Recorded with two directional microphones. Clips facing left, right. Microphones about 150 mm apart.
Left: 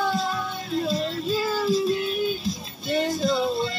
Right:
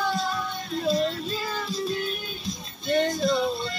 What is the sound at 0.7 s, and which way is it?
Child singing, centre (ahead or behind).